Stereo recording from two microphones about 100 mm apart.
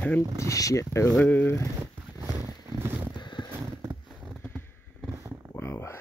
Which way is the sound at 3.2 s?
50° left (ahead or behind).